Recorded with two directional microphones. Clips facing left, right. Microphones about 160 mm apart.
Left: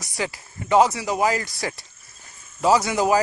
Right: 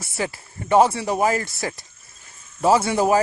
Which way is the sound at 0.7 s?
30° right (ahead or behind).